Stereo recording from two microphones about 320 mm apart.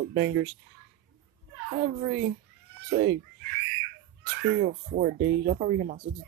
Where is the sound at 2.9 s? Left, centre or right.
Right.